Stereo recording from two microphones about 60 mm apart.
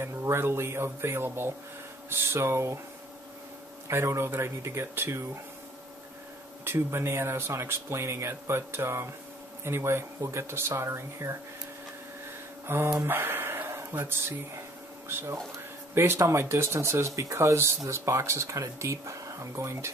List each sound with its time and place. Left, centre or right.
0.0 s speech: right
3.9 s speech: right
6.6 s speech: right
12.6 s speech: right
13.0 s a sound: right
15.9 s speech: right